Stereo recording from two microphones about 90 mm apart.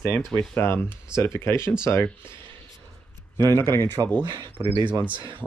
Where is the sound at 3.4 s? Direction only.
45° right (ahead or behind).